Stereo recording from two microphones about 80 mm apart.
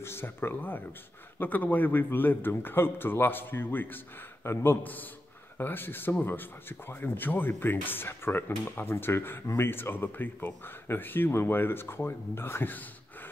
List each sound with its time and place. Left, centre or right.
0.0 s speech: left